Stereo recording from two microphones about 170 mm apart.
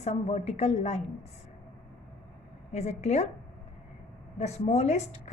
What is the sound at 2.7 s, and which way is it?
Speech, 40° left (ahead or behind).